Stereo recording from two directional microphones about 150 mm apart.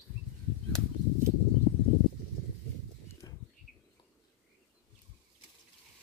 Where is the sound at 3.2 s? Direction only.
25° left (ahead or behind).